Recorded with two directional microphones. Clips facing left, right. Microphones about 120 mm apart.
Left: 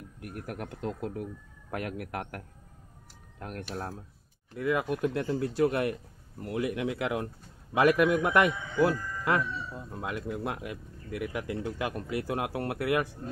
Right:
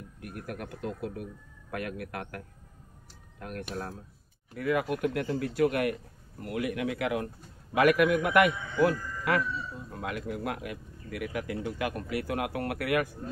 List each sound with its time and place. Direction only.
0.2 s speech: 20° left (ahead or behind)